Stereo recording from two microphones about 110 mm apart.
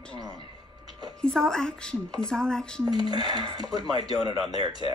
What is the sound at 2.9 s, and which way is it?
Speech, 40° right (ahead or behind).